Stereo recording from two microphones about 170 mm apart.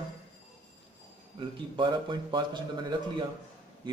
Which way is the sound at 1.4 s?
30° right (ahead or behind).